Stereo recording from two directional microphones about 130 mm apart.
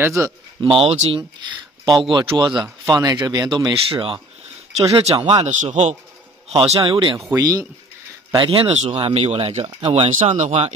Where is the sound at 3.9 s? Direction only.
45° right (ahead or behind).